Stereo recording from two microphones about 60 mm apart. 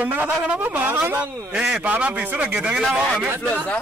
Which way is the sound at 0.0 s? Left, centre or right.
Right.